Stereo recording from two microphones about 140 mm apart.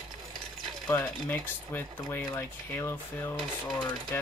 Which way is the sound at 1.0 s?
10° left (ahead or behind).